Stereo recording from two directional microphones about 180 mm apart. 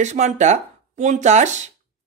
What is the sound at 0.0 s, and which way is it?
Speech, 40° right (ahead or behind).